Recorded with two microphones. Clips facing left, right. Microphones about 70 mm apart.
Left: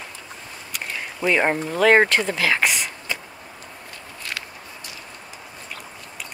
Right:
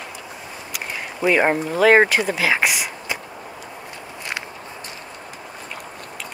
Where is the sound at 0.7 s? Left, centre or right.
Centre.